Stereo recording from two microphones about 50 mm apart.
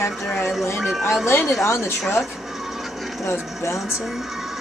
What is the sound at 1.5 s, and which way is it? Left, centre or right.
Speech, left.